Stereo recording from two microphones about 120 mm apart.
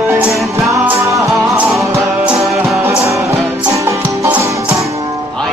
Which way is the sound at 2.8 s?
20° right (ahead or behind).